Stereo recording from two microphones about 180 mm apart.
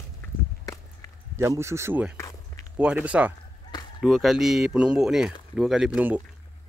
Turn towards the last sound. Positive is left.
turn(degrees=-5)  # may be behind; listen again after turning